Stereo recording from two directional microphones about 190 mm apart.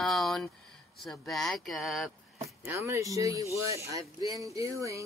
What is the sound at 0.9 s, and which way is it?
Speech, centre (ahead or behind).